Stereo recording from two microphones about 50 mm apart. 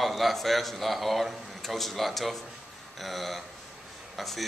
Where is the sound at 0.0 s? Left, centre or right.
Centre.